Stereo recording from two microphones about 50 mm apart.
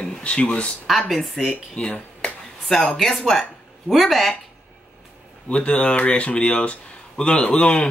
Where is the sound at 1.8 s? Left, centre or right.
Left.